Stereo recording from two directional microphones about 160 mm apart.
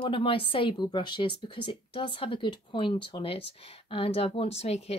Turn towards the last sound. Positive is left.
turn(degrees=40)  # may be behind; listen again after turning